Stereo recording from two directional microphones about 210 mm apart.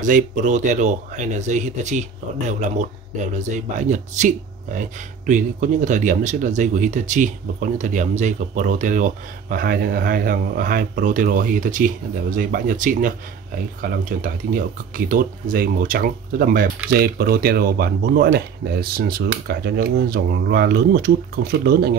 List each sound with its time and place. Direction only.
0.0 s speech: 35° right (ahead or behind)